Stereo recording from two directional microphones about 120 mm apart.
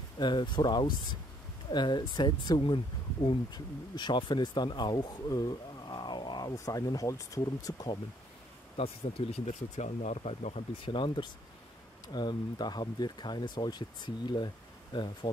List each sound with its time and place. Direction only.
0.2 s speech: 40° left (ahead or behind)
8.7 s speech: 55° left (ahead or behind)
10.9 s speech: 45° left (ahead or behind)